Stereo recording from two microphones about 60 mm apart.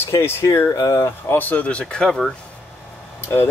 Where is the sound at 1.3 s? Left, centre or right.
Left.